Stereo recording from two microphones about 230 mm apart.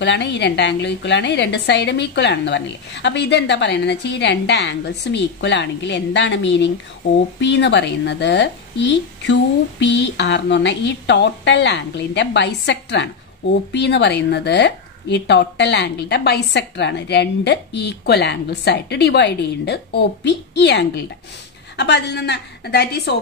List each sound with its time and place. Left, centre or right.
0.0 s speech: left